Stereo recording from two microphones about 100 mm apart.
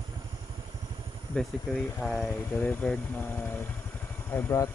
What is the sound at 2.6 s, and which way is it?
Speech, 10° left (ahead or behind).